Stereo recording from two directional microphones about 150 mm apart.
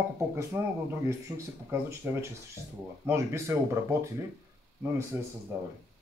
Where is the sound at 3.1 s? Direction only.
20° right (ahead or behind).